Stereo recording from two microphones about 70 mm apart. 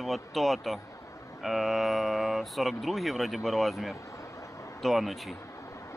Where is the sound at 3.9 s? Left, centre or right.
Left.